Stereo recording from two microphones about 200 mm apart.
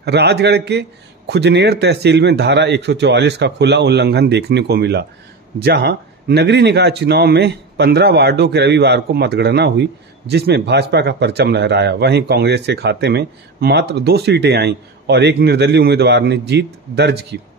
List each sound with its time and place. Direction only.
0.0 s speech: 55° right (ahead or behind)